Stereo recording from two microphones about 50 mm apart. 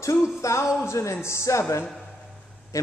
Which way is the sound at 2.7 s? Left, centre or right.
Left.